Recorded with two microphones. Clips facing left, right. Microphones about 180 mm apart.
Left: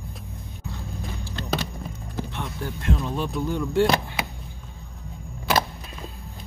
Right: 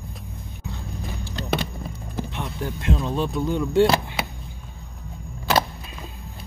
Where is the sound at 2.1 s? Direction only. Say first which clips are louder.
Right 1 dB; 15° right (ahead or behind).